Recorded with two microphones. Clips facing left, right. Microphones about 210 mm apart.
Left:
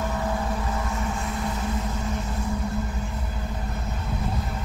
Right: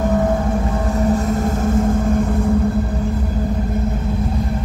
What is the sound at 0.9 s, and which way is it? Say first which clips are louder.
Vehicle: right 12 dB; 40° right (ahead or behind).